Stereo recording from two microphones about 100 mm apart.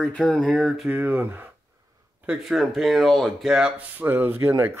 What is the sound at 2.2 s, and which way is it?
Speech, 5° right (ahead or behind).